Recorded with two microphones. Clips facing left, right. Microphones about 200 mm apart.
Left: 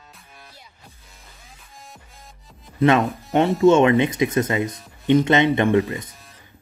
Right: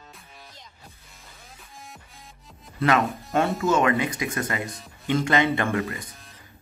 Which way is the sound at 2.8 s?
25° left (ahead or behind).